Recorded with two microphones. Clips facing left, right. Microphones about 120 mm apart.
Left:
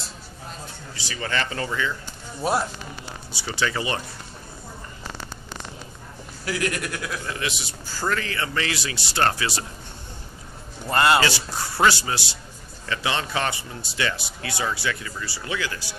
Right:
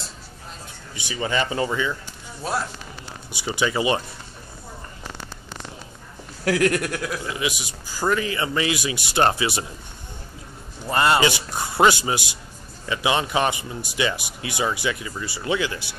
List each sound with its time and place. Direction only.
0.9 s speech: 20° right (ahead or behind)
3.3 s speech: 15° right (ahead or behind)
6.4 s speech: 60° right (ahead or behind)
7.2 s speech: 15° right (ahead or behind)
10.9 s speech: 5° right (ahead or behind)
11.1 s speech: 20° right (ahead or behind)